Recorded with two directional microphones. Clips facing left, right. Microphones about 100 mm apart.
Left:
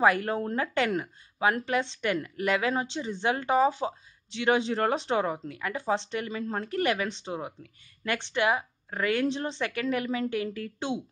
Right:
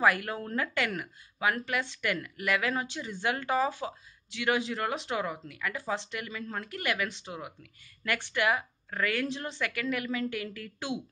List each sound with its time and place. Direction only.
0.0 s a woman's voice: 30° left (ahead or behind)